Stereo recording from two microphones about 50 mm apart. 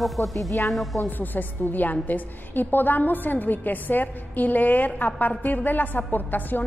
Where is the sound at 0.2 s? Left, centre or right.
Left.